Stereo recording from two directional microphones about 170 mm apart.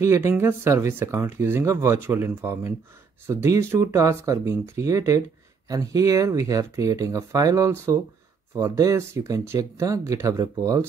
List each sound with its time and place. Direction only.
0.0 s speech: 15° right (ahead or behind)